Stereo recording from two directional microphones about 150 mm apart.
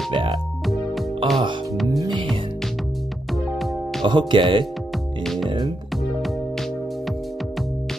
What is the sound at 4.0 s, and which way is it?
Speech, 30° right (ahead or behind).